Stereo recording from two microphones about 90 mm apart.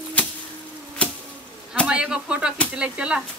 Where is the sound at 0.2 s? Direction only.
20° left (ahead or behind).